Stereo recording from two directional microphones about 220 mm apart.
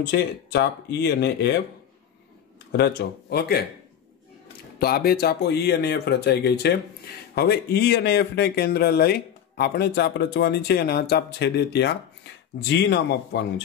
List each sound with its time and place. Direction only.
0.0 s speech: 50° left (ahead or behind)
2.7 s speech: 45° left (ahead or behind)
4.7 s speech: 45° left (ahead or behind)